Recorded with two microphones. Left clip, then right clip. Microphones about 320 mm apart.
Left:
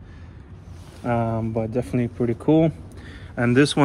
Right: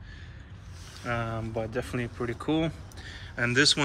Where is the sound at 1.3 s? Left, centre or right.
Left.